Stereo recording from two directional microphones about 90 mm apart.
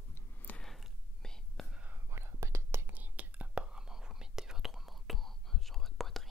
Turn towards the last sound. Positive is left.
turn(degrees=0)  # may be behind; listen again after turning